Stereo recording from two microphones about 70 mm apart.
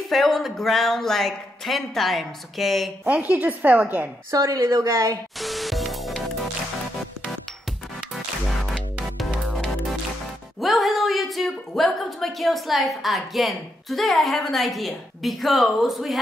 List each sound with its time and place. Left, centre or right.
0.1 s speech: centre
3.1 s a woman's voice: right
4.6 s speech: right
5.4 s music: centre
8.7 s music: centre
10.6 s a woman's voice: centre